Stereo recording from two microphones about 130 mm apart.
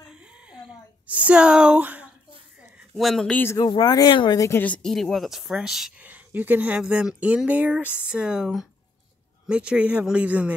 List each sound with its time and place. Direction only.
0.1 s a sound: 10° right (ahead or behind)
3.0 s speech: centre (ahead or behind)
3.6 s speech: 35° left (ahead or behind)
4.4 s speech: 15° left (ahead or behind); by 10.5 s 10° right (ahead or behind)